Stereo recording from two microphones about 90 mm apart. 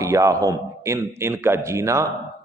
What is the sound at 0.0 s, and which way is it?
A man's voice, 35° right (ahead or behind).